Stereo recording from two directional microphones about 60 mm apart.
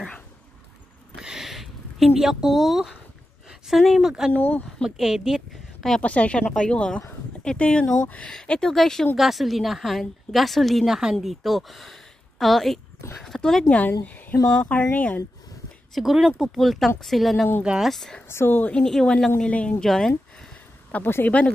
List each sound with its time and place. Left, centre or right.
1.1 s a sound: centre
3.4 s speech: centre
4.3 s speech: left
4.8 s speech: centre
5.9 s a woman's voice: left; by 13.7 s centre
13.7 s speech: left
15.9 s a woman's voice: centre
18.3 s a woman's voice: left
18.6 s speech: left
18.9 s speech: centre
20.9 s speech: left